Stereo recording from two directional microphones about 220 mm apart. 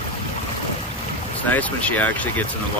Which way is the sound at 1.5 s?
5° left (ahead or behind).